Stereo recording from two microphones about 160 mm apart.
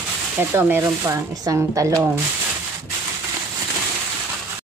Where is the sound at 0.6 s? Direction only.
15° right (ahead or behind).